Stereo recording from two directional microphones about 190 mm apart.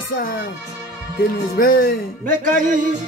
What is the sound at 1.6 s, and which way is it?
Music, 50° left (ahead or behind).